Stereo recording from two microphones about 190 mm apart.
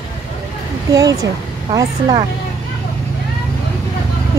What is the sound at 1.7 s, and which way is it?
Speech, 25° right (ahead or behind).